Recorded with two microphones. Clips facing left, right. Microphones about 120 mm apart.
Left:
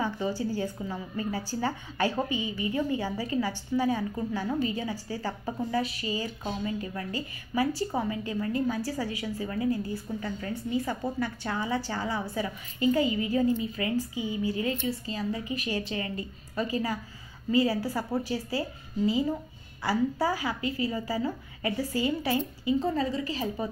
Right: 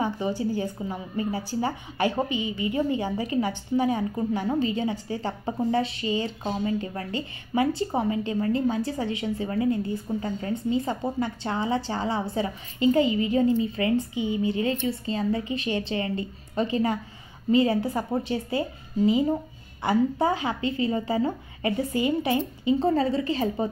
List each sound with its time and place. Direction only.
0.0 s a woman's voice: 20° right (ahead or behind)
22.9 s a woman's voice: 30° right (ahead or behind)